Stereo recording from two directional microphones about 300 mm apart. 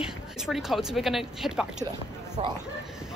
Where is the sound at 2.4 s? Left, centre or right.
Right.